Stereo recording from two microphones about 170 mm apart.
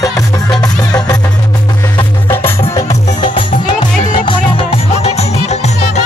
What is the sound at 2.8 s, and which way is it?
Music, 25° left (ahead or behind).